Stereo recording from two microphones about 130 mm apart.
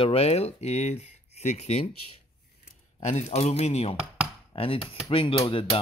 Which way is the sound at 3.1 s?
55° left (ahead or behind).